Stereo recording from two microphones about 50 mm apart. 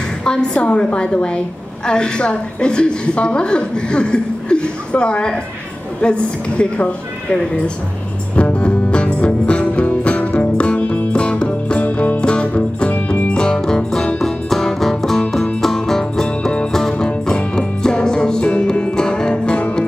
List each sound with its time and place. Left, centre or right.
0.2 s a woman's voice: centre
8.4 s music: left